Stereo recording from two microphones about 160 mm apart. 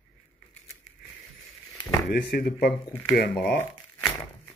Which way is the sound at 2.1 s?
75° left (ahead or behind).